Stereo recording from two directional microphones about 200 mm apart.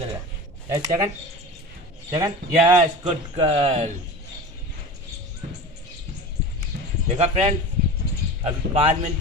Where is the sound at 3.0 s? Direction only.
30° right (ahead or behind).